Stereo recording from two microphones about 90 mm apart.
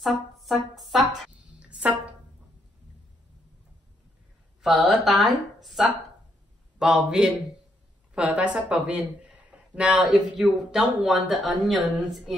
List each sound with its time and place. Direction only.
0.0 s speech: centre (ahead or behind)
1.6 s music: 15° right (ahead or behind)
4.6 s a woman's voice: 5° right (ahead or behind)